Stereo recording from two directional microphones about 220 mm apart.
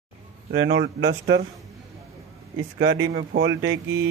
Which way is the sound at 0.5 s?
50° right (ahead or behind).